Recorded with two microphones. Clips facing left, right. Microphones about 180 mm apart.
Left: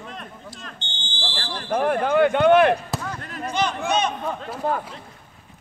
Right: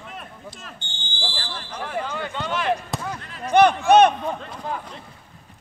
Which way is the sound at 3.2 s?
45° left (ahead or behind).